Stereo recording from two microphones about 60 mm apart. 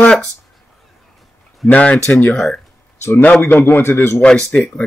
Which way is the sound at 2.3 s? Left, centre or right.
Centre.